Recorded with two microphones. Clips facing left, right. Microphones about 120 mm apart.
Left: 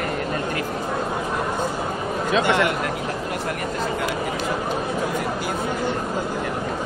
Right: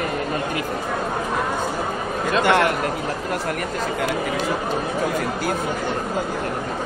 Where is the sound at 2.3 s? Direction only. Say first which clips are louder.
Right 2 dB; 50° right (ahead or behind).